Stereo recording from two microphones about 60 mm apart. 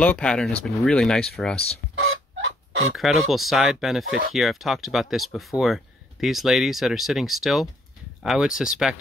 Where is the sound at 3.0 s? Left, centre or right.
Centre.